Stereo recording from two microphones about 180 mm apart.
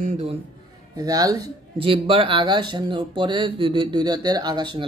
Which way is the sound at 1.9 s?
30° right (ahead or behind).